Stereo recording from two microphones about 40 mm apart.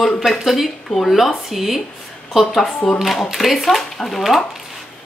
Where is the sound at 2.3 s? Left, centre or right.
Centre.